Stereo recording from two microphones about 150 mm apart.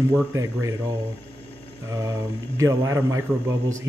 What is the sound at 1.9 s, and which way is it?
Speech, 20° right (ahead or behind).